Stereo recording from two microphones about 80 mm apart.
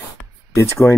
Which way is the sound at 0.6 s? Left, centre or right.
Left.